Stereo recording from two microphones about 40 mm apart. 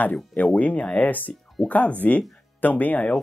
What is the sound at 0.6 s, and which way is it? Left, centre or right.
Speech, left.